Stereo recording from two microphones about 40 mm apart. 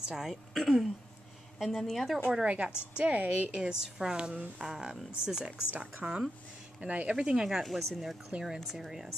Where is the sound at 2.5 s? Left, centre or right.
Right.